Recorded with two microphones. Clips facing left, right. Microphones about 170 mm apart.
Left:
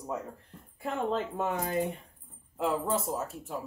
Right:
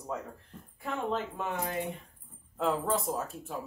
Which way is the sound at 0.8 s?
40° left (ahead or behind).